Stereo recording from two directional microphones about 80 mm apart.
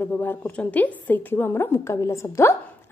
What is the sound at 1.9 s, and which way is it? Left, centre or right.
Speech, left.